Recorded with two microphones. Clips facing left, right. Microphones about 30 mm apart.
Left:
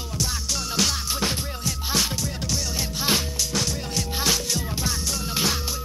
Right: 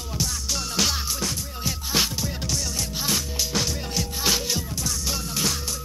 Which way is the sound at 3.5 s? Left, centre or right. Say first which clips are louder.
Right 1 dB; centre.